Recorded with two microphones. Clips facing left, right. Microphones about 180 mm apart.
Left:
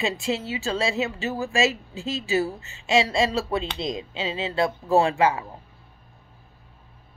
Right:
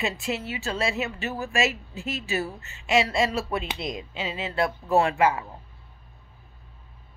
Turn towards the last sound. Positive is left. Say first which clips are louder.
# left 1 dB
turn(degrees=25)  # may be behind; listen again after turning